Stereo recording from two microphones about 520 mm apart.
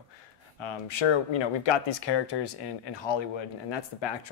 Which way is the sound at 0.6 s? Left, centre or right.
Left.